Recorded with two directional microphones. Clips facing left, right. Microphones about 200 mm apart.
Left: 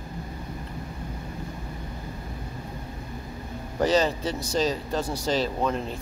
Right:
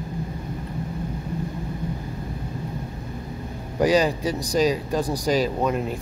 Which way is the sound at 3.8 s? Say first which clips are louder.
Right 3 dB; 15° right (ahead or behind).